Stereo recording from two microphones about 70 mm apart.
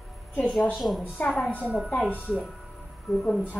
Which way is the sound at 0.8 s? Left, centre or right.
Centre.